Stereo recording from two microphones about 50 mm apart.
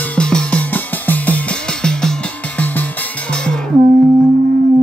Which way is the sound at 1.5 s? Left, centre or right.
Centre.